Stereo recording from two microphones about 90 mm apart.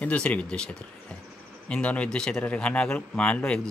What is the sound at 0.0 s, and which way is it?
A man's voice, 15° left (ahead or behind).